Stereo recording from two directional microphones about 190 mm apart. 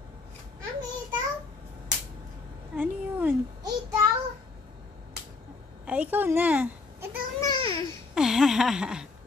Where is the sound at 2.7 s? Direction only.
10° right (ahead or behind).